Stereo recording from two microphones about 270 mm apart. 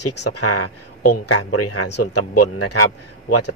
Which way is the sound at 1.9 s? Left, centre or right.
Left.